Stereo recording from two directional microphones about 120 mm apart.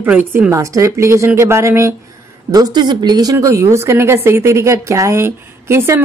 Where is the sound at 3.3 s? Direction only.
25° right (ahead or behind).